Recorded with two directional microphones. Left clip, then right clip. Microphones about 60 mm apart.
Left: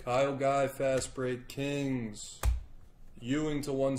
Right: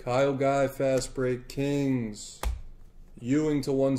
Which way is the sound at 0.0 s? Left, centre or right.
Right.